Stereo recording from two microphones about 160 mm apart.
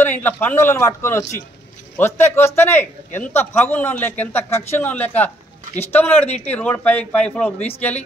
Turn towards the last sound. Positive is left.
turn(degrees=10)  # may be behind; listen again after turning